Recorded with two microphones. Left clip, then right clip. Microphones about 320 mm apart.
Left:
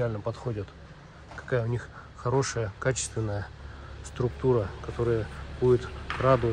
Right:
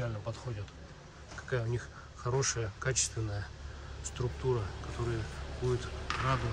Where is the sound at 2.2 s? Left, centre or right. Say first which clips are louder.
Left 6 dB; centre.